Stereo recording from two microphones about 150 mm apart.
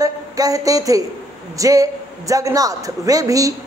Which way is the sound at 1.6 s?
25° right (ahead or behind).